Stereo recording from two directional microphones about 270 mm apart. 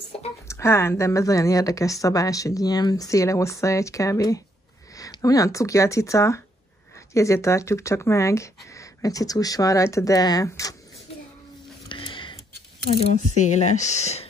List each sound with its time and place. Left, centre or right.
0.5 s speech: centre
11.9 s a sound: centre
13.4 s speech: left